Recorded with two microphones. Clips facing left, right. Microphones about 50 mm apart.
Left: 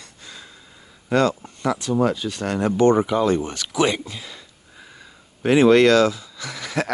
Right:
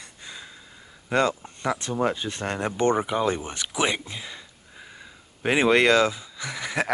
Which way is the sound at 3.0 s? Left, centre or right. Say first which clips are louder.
Left 5 dB; centre.